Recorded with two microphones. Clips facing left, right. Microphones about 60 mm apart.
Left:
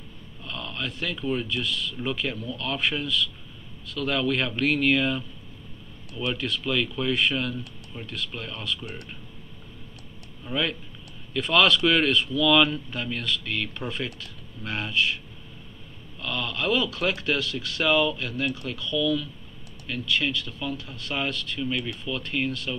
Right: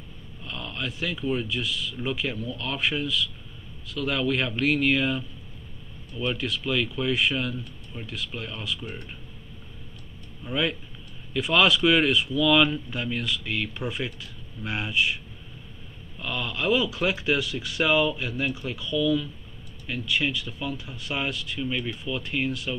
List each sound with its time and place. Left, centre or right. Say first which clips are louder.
0.4 s speech: even; centre
10.4 s speech: right 1 dB; centre
16.2 s speech: even; centre